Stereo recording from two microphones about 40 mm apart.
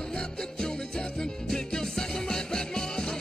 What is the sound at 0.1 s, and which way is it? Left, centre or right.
Music, centre.